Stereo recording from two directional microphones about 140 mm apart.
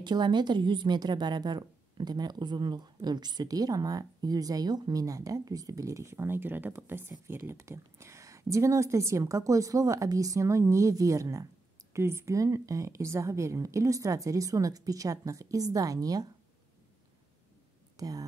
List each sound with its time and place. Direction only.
0.0 s a woman's voice: 30° right (ahead or behind)
17.9 s speech: 25° right (ahead or behind)